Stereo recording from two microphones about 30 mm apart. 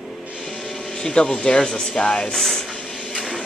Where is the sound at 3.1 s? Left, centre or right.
Centre.